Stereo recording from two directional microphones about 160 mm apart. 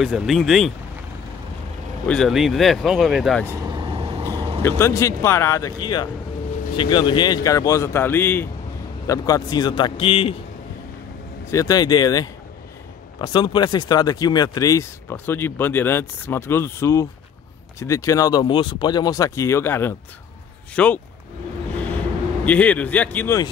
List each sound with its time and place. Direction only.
0.0 s speech: centre (ahead or behind)
2.0 s speech: centre (ahead or behind)
3.5 s vehicle: 25° right (ahead or behind)
4.6 s speech: 15° left (ahead or behind); by 10.3 s 35° left (ahead or behind)
11.5 s speech: 25° left (ahead or behind); by 21.0 s 10° left (ahead or behind)
22.4 s speech: 10° left (ahead or behind)